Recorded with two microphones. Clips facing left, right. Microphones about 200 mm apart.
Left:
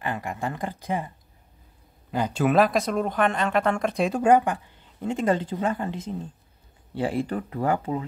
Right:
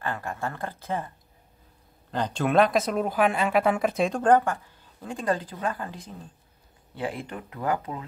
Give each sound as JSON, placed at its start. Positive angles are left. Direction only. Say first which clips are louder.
{"t": 0.0, "sound": "speech", "louder": "left 2 dB", "side_deg": 15}